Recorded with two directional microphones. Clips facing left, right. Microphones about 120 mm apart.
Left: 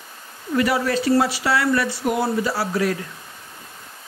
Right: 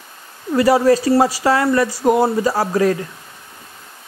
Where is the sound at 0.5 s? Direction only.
35° right (ahead or behind).